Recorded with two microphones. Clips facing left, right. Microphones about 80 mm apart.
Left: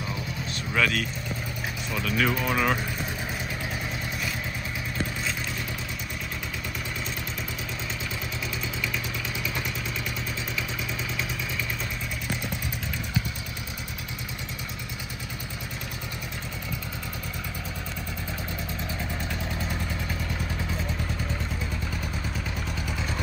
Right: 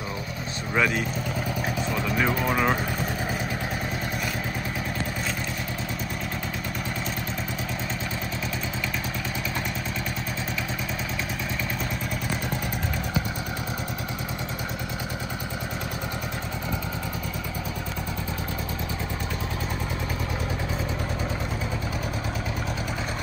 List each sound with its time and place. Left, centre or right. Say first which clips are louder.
0.7 s speech: right 2 dB; right
2.0 s speech: even; centre